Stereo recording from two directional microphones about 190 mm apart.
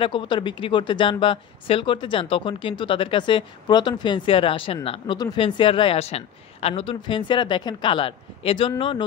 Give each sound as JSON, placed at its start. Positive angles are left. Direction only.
{"t": 0.0, "sound": "a man's voice", "side_deg": 25}